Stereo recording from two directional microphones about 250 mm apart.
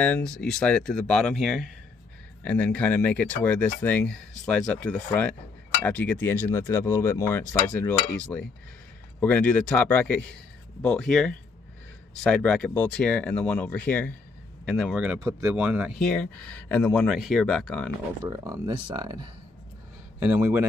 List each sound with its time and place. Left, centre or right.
0.0 s speech: centre
9.2 s speech: centre
18.2 s speech: centre